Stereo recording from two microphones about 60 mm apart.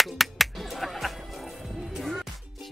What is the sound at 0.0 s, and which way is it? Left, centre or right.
Music, centre.